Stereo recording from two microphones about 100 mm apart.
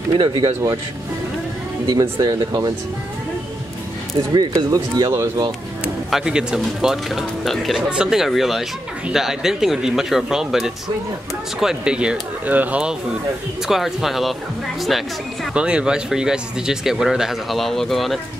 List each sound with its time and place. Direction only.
0.2 s speech: 50° right (ahead or behind)
1.9 s speech: 40° right (ahead or behind)
4.3 s speech: 40° right (ahead or behind)
6.0 s speech: 5° right (ahead or behind)
13.7 s speech: 5° right (ahead or behind)
15.5 s speech: 10° right (ahead or behind)